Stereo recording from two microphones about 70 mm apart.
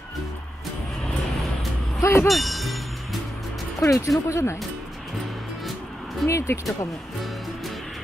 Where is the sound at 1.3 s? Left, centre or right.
Centre.